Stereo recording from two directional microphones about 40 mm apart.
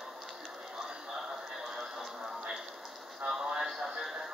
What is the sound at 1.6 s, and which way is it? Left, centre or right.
Music, centre.